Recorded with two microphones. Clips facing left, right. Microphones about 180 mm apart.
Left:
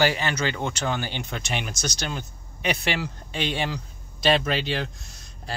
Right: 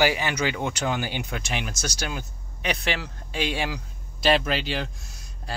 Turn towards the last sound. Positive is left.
turn(degrees=0)  # may be behind; listen again after turning